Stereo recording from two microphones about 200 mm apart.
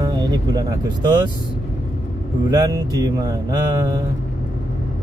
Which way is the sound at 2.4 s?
20° right (ahead or behind).